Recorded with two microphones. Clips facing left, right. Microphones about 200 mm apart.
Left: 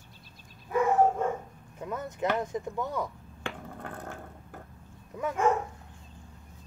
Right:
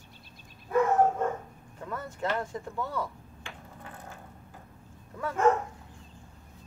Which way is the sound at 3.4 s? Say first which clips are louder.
Left 8 dB; 60° left (ahead or behind).